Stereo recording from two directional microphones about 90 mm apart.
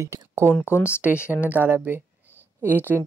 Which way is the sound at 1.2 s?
20° right (ahead or behind).